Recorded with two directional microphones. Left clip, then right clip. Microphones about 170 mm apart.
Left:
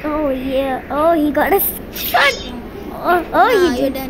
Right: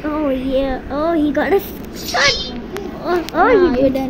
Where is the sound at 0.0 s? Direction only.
Centre (ahead or behind).